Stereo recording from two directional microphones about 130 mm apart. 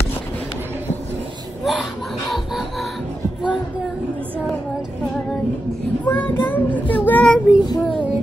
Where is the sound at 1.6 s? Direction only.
Centre (ahead or behind).